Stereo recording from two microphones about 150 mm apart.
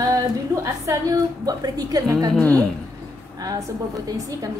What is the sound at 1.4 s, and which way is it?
Speech, 25° right (ahead or behind).